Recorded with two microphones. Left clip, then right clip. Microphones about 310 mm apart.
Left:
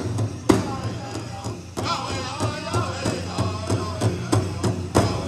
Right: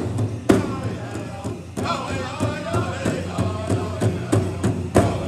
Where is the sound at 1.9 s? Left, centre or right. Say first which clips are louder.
Right 1 dB; left.